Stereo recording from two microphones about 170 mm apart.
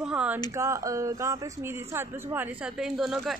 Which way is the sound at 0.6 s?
20° right (ahead or behind).